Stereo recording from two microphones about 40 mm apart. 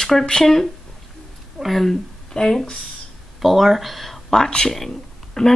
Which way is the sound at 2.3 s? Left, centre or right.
Left.